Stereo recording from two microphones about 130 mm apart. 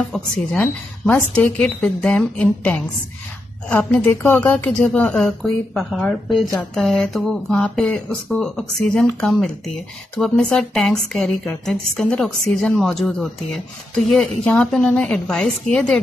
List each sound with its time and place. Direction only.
0.0 s a woman's voice: 5° left (ahead or behind)